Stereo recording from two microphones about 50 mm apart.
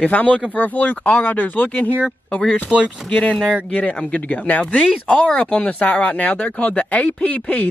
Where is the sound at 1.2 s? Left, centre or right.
Left.